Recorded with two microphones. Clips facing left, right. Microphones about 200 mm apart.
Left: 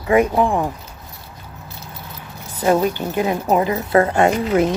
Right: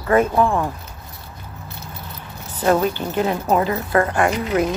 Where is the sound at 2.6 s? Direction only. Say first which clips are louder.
Left 1 dB; 10° left (ahead or behind).